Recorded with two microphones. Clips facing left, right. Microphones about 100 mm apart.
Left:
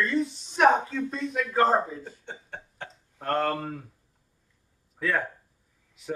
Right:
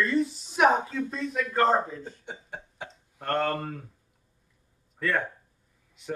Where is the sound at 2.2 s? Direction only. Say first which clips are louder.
Right 1 dB; 10° right (ahead or behind).